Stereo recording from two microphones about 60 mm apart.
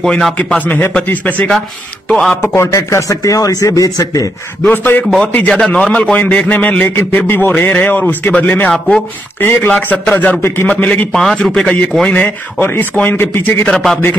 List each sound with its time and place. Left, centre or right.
0.7 s speech: left
2.0 s speech: centre
2.4 s speech: left
2.7 s speech: left
4.6 s a man's voice: left
7.0 s speech: left
9.4 s speech: left
9.7 s speech: left
11.1 s a man's voice: centre
12.1 s speech: left
13.7 s a man's voice: centre